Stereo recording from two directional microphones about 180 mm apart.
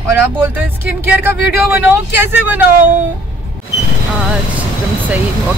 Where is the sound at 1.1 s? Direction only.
10° right (ahead or behind).